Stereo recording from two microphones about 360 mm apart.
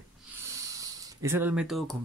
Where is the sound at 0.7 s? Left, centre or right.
Centre.